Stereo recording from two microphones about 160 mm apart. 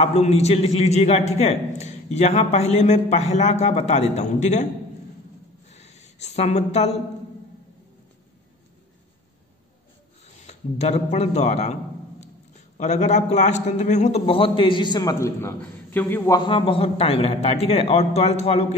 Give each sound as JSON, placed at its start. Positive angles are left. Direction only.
{"t": 0.0, "sound": "a man's voice", "side_deg": 40}
{"t": 5.7, "sound": "a sound", "side_deg": 45}
{"t": 10.4, "sound": "a man's voice", "side_deg": 45}
{"t": 16.3, "sound": "a man's voice", "side_deg": 30}